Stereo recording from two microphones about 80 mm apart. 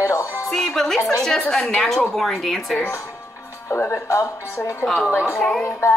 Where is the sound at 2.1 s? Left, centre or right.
Centre.